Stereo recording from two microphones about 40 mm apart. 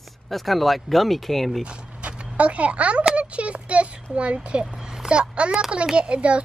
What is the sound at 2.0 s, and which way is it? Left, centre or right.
A child's voice, right.